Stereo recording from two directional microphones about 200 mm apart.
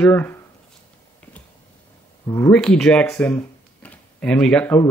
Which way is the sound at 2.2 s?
15° left (ahead or behind).